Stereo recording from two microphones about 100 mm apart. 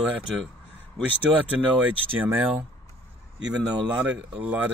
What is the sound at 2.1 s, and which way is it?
Speech, 15° right (ahead or behind).